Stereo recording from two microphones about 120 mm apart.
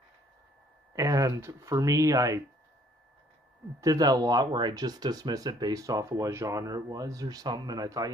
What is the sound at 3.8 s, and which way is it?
Speech, 30° right (ahead or behind).